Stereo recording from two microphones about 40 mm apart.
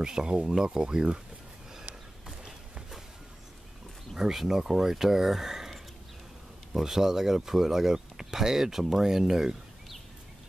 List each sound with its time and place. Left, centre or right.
0.0 s speech: centre
4.2 s speech: centre